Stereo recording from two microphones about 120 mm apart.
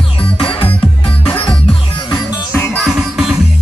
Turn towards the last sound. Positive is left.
turn(degrees=0)  # may be behind; listen again after turning